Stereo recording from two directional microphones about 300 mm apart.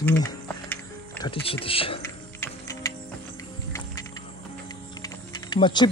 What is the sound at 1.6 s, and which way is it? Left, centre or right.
Speech, centre.